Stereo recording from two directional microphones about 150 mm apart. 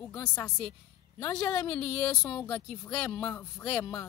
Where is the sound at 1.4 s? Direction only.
20° left (ahead or behind).